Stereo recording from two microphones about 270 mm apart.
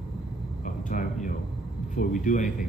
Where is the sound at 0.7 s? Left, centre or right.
Left.